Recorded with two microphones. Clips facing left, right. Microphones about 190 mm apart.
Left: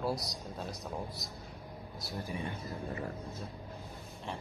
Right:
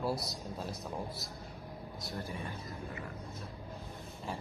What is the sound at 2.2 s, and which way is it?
Speech, 15° left (ahead or behind).